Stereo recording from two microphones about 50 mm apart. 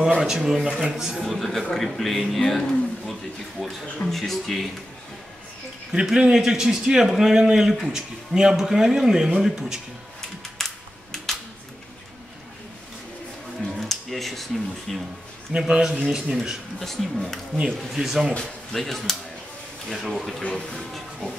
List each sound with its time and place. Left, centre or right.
0.2 s a man's voice: centre
1.2 s speech: centre
3.1 s a sound: centre
4.1 s speech: centre
5.9 s a man's voice: centre
10.6 s music: centre
13.7 s a sound: centre
15.5 s a man's voice: centre
16.8 s speech: centre
17.9 s a man's voice: centre
18.3 s speech: centre
18.8 s speech: centre